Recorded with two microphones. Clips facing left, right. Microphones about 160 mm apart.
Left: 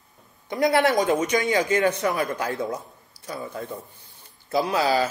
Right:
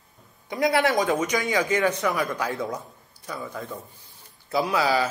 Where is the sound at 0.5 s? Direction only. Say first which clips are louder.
Left 2 dB; 40° left (ahead or behind).